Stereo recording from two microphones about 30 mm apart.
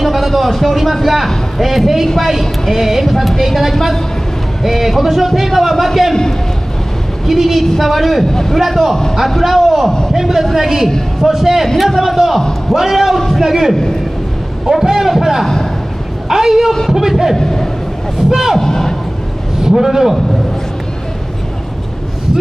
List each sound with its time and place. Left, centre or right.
0.0 s speech: centre
7.2 s speech: centre
8.3 s speech: centre
8.5 s a man's voice: centre
12.4 s a man's voice: centre
12.9 s a man's voice: centre
14.7 s a sound: centre
16.3 s a man's voice: centre
17.4 s speech: centre
18.3 s a man's voice: centre
18.6 s speech: centre
19.6 s a man's voice: centre